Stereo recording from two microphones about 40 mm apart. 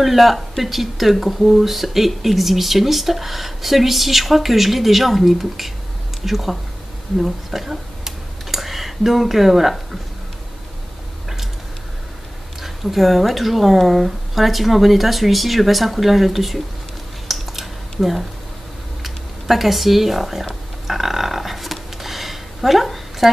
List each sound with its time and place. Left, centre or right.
0.0 s speech: centre
12.6 s speech: centre
17.3 s typing: centre
19.0 s speech: centre
20.8 s a sound: centre